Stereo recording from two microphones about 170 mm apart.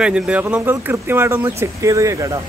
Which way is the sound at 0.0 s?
5° right (ahead or behind).